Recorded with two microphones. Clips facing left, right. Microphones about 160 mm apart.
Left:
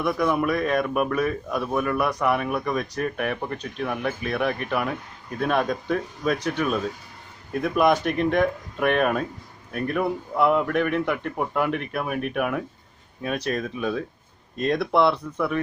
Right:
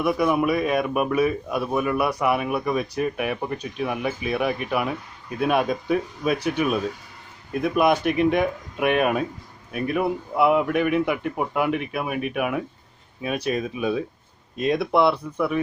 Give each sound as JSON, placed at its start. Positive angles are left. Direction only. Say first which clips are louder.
{"t": 0.0, "sound": "speech", "louder": "right 2 dB", "side_deg": -10}